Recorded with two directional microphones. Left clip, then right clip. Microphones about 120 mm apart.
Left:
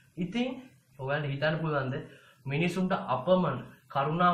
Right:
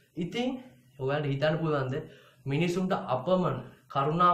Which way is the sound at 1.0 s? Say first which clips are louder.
Right 2 dB; 25° right (ahead or behind).